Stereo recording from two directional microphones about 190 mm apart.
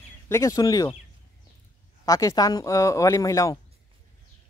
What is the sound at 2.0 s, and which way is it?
Speech, 20° left (ahead or behind).